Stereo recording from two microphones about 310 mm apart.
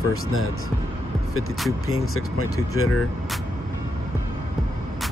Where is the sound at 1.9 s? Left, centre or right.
Left.